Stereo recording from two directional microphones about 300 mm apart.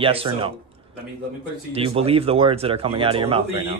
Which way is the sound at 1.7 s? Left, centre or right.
Centre.